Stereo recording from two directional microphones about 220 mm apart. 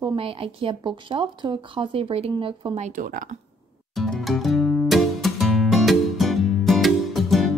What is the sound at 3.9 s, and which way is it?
Music, centre (ahead or behind).